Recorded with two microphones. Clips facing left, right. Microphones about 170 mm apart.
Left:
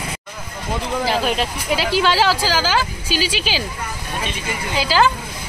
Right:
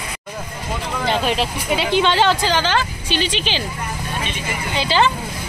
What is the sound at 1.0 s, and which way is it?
Speech, centre (ahead or behind).